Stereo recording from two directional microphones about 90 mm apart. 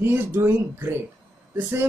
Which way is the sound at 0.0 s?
20° right (ahead or behind).